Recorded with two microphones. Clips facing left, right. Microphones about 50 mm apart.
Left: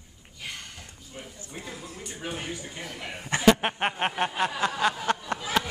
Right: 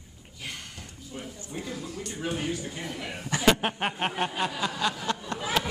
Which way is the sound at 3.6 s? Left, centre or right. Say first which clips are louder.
Left 2 dB; left.